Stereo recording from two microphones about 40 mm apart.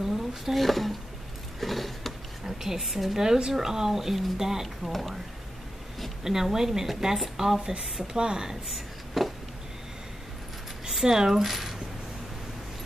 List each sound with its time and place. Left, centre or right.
0.0 s speech: centre
1.6 s a sound: centre
2.4 s a woman's voice: centre
6.2 s a woman's voice: centre
8.7 s a sound: centre
10.9 s speech: centre